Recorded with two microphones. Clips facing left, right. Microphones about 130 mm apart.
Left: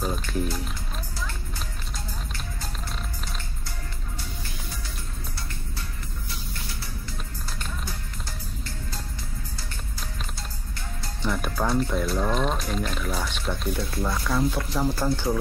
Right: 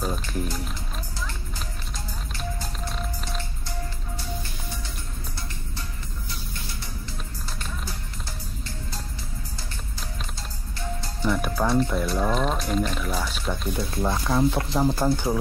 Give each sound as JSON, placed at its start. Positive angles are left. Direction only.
{"t": 0.0, "sound": "music", "side_deg": 0}
{"t": 11.2, "sound": "speech", "side_deg": -5}
{"t": 14.0, "sound": "speech", "side_deg": -25}